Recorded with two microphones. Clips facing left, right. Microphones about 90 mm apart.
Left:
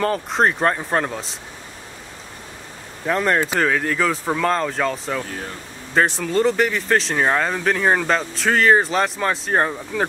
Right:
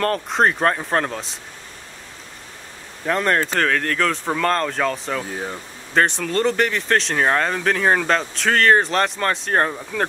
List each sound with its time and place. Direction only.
0.0 s speech: centre (ahead or behind)
3.1 s speech: 5° left (ahead or behind)
5.2 s speech: 15° right (ahead or behind)
5.9 s speech: centre (ahead or behind)